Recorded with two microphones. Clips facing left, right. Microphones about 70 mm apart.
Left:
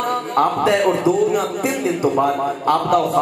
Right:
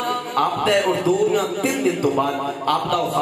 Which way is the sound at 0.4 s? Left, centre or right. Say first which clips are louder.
Left 3 dB; centre.